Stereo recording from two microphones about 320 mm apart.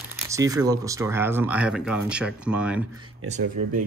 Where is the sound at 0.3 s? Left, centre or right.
Centre.